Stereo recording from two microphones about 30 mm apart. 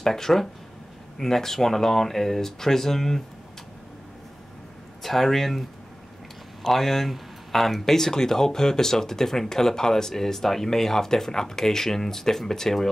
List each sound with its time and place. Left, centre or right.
0.0 s speech: centre
5.0 s speech: centre